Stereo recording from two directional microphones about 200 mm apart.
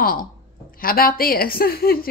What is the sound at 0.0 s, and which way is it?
Speech, 45° left (ahead or behind).